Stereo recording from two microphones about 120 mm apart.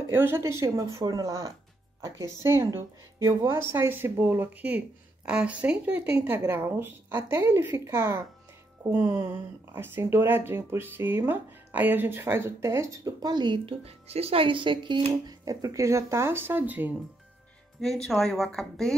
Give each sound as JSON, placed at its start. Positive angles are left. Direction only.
{"t": 0.1, "sound": "speech", "side_deg": -20}
{"t": 13.8, "sound": "speech", "side_deg": -55}
{"t": 15.2, "sound": "speech", "side_deg": -30}
{"t": 17.7, "sound": "speech", "side_deg": 5}